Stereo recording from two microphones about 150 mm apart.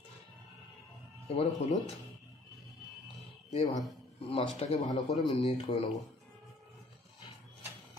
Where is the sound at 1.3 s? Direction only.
45° left (ahead or behind).